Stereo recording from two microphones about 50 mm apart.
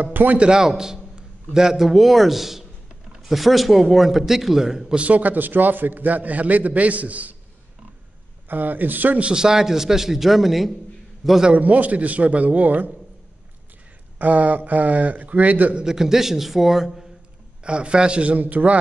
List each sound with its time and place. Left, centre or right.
0.0 s a man's voice: right
0.4 s a man's voice: centre
4.9 s a man's voice: right
8.5 s a man's voice: right
9.2 s a man's voice: centre
11.5 s a man's voice: right
14.1 s a man's voice: right
15.7 s a man's voice: centre
17.6 s a man's voice: right